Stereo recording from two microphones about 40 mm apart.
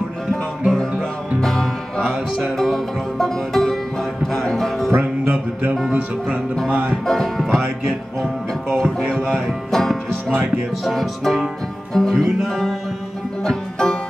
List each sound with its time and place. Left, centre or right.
1.4 s music: centre
6.7 s music: right
7.1 s music: centre
9.7 s music: centre
10.3 s music: right
10.8 s music: centre
13.4 s music: centre